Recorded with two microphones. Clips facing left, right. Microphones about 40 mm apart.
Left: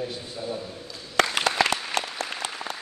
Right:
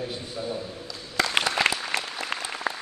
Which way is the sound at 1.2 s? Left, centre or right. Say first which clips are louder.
Left 1 dB; left.